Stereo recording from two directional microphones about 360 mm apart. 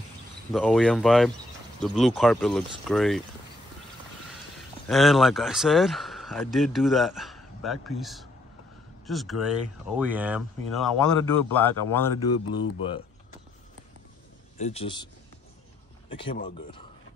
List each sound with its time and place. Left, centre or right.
0.5 s speech: centre
4.8 s speech: centre
14.6 s speech: centre
16.1 s speech: centre